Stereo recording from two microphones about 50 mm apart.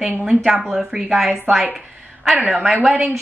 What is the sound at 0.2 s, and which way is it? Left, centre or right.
A woman's voice, centre.